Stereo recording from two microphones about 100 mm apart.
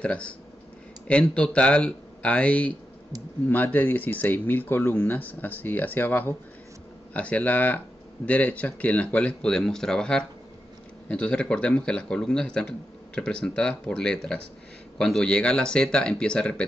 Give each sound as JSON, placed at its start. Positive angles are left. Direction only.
{"t": 0.0, "sound": "a man's voice", "side_deg": 10}